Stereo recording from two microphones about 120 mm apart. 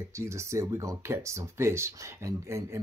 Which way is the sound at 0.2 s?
25° right (ahead or behind).